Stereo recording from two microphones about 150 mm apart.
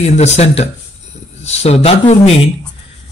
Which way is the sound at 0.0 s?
50° left (ahead or behind).